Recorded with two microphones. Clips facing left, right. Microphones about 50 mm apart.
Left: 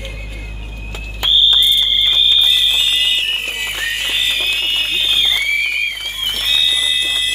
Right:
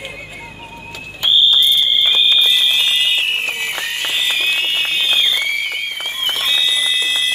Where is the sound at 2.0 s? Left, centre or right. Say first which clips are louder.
Even; centre.